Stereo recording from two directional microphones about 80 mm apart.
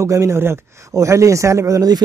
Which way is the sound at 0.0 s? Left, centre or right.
Right.